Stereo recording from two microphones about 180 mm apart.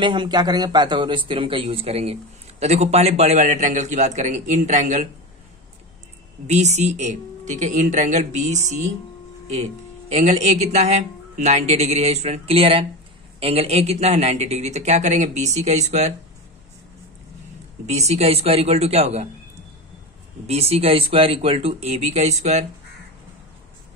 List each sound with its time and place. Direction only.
0.0 s a man's voice: 25° right (ahead or behind)
6.4 s a man's voice: 40° right (ahead or behind)
10.1 s a man's voice: 35° right (ahead or behind)
17.8 s a man's voice: 40° right (ahead or behind)
20.4 s a man's voice: 35° right (ahead or behind)